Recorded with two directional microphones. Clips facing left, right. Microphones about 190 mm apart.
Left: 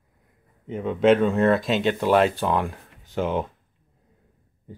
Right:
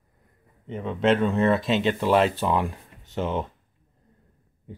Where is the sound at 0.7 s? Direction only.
Centre (ahead or behind).